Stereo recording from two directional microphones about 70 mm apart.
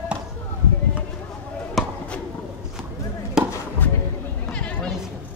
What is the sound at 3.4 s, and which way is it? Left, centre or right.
Chop, centre.